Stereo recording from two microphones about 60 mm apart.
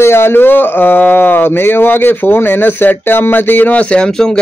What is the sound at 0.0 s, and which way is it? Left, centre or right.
A man's voice, left.